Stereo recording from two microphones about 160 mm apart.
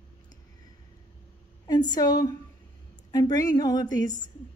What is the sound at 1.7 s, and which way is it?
A woman's voice, 25° left (ahead or behind).